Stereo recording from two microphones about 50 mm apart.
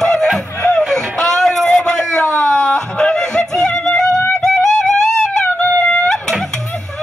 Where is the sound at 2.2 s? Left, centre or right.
Centre.